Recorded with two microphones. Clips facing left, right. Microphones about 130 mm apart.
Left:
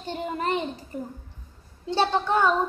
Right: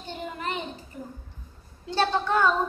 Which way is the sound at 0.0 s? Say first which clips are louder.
Left 5 dB; 35° left (ahead or behind).